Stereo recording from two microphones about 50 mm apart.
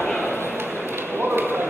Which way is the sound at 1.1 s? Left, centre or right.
Right.